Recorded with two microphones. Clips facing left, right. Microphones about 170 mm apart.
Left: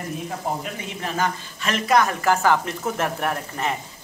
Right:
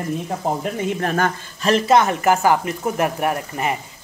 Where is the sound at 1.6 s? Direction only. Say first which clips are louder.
Right 5 dB; 35° right (ahead or behind); by 3.7 s 15° right (ahead or behind).